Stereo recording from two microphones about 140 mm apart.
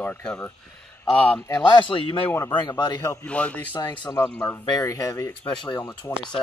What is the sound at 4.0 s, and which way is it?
A man's voice, 25° left (ahead or behind).